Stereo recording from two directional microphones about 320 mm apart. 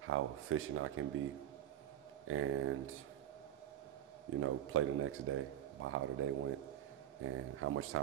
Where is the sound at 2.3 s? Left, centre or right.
Right.